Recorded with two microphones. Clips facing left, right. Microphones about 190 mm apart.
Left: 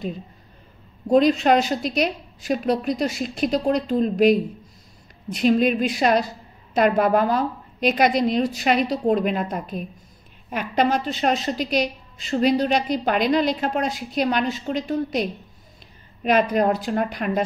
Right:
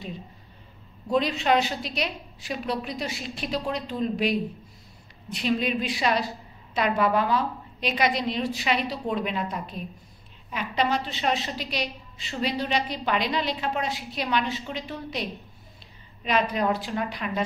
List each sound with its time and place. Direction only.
1.0 s a woman's voice: 45° left (ahead or behind)